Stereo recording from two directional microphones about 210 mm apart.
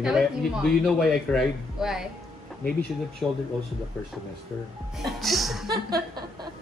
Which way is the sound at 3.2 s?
5° left (ahead or behind).